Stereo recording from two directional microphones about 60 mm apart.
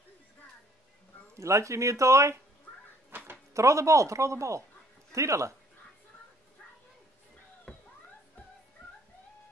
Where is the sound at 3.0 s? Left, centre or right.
Right.